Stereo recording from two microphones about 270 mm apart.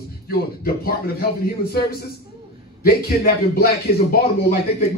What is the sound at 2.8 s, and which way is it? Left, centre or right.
A man's voice, left.